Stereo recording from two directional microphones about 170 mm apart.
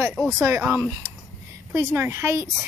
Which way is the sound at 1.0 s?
25° right (ahead or behind).